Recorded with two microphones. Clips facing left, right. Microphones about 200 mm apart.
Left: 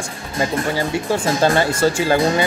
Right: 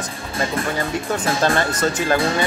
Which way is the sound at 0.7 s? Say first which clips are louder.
Left 3 dB; 30° left (ahead or behind).